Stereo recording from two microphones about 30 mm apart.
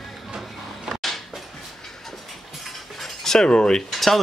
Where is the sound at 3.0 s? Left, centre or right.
Centre.